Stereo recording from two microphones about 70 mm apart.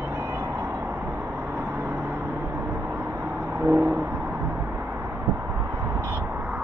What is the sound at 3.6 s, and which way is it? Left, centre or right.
Vehicle, right.